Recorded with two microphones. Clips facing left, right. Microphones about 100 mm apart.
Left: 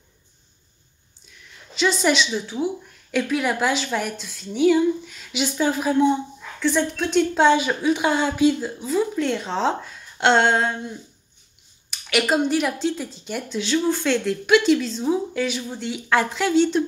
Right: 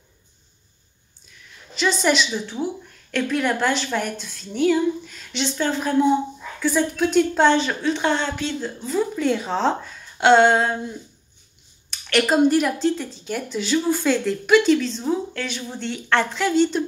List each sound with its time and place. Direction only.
1.8 s speech: centre (ahead or behind)
6.6 s speech: 5° right (ahead or behind)
11.9 s speech: 5° left (ahead or behind)